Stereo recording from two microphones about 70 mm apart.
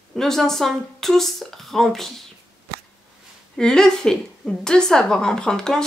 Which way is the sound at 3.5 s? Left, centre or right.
Centre.